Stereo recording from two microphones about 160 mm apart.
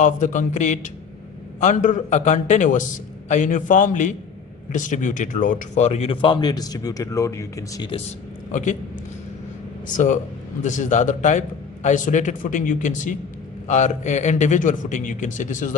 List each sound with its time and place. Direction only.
0.0 s a man's voice: 50° left (ahead or behind); by 7.9 s 20° left (ahead or behind)
8.5 s a man's voice: 50° left (ahead or behind)
9.9 s a man's voice: 50° left (ahead or behind)